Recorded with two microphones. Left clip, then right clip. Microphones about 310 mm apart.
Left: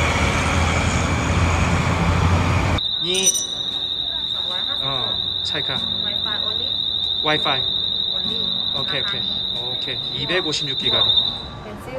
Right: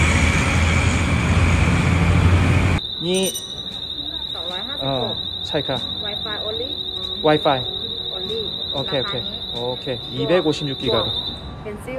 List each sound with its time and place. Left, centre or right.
0.0 s vehicle: left
7.2 s speech: centre
10.3 s speech: centre